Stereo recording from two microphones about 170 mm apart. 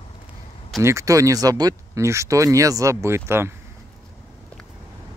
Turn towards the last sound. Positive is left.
turn(degrees=-15)  # may be behind; listen again after turning